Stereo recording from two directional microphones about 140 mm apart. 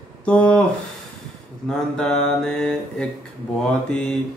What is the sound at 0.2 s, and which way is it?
Speech, 10° left (ahead or behind).